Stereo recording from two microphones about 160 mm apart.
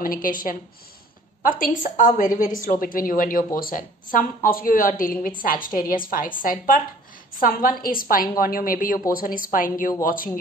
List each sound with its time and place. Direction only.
0.0 s a woman's voice: 60° left (ahead or behind)